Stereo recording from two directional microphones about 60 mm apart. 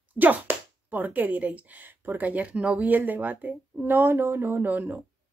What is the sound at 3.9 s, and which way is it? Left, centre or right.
Speech, right.